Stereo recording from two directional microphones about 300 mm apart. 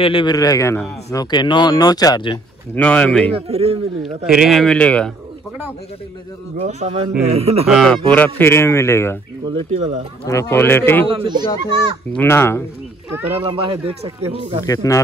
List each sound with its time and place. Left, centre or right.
0.0 s speech: centre
3.3 s a man's voice: centre
4.3 s speech: centre
6.5 s a man's voice: right
7.6 s speech: centre
9.5 s a man's voice: centre
10.2 s speech: centre
11.1 s speech: centre
12.2 s speech: centre
13.2 s speech: centre
14.7 s speech: centre